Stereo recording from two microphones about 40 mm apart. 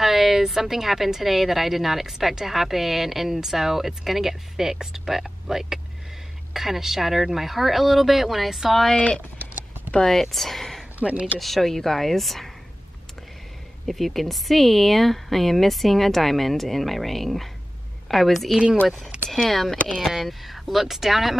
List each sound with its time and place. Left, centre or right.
0.0 s speech: centre
8.9 s speech: left
9.9 s speech: centre
11.0 s speech: right
11.3 s speech: centre
13.8 s speech: centre